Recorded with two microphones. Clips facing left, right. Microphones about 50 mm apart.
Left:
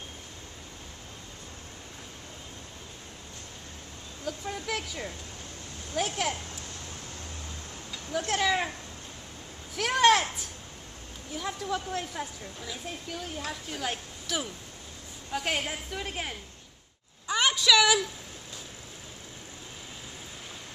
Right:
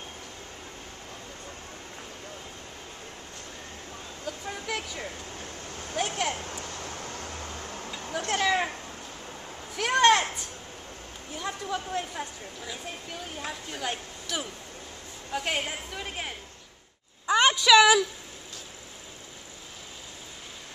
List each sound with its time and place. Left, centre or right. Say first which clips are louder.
4.3 s vehicle: left 1 dB; centre
5.9 s speech: even; centre
8.3 s speech: right 2 dB; centre
9.8 s speech: right 1 dB; centre
11.3 s speech: even; centre
17.3 s a sound: right 5 dB; centre